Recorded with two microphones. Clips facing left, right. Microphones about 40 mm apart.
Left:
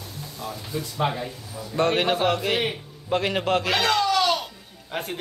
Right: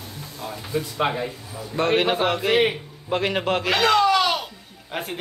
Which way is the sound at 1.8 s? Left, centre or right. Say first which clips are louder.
Right 1 dB; centre.